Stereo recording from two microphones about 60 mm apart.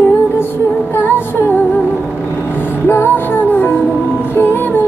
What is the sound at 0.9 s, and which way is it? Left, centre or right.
Music, left.